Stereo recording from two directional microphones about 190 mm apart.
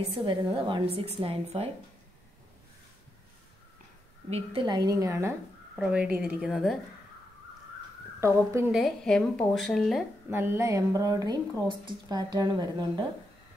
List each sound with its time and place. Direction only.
0.2 s a woman's voice: 25° right (ahead or behind)
4.3 s a woman's voice: 30° right (ahead or behind)
5.8 s a woman's voice: 5° right (ahead or behind)
8.2 s a woman's voice: 15° right (ahead or behind)
8.7 s a woman's voice: centre (ahead or behind)
10.3 s a woman's voice: 10° right (ahead or behind)